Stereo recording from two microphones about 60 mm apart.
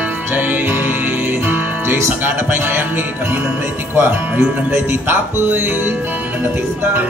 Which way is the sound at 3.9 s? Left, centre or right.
Right.